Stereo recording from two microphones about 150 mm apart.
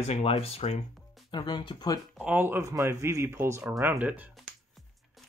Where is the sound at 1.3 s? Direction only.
30° left (ahead or behind).